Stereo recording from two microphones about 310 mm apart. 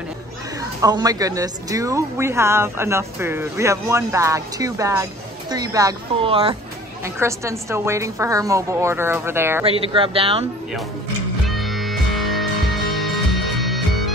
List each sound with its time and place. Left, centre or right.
0.7 s speech: centre
11.4 s music: centre